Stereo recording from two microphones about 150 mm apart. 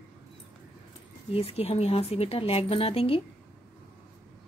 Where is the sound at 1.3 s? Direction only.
40° left (ahead or behind).